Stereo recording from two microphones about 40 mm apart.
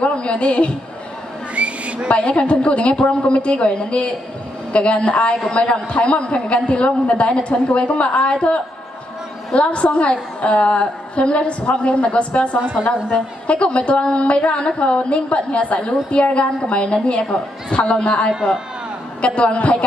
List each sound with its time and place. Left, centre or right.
0.0 s a woman's voice: left
1.5 s a sound: right
2.0 s a man's voice: left